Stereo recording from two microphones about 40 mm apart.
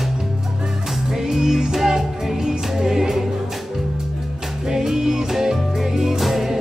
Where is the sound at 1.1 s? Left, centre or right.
Centre.